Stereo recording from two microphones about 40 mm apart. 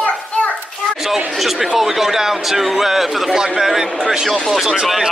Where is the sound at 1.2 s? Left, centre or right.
Centre.